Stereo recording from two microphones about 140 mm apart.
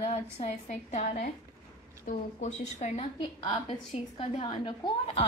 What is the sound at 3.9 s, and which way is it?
A woman's voice, 40° left (ahead or behind).